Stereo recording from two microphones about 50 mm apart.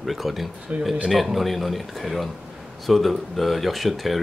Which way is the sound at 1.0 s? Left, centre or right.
Centre.